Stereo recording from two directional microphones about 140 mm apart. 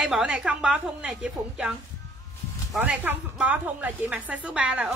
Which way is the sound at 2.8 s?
10° right (ahead or behind).